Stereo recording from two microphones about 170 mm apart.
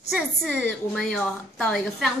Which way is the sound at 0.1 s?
Centre (ahead or behind).